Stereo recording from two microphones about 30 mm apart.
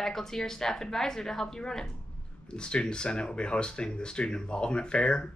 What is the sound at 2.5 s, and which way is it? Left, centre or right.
Speech, left.